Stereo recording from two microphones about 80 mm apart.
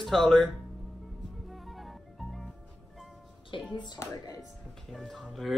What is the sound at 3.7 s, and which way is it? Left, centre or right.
Speech, left.